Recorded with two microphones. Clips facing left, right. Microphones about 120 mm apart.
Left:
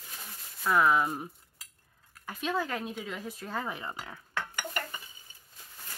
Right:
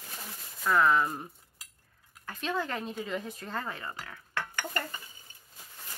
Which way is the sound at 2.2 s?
10° left (ahead or behind).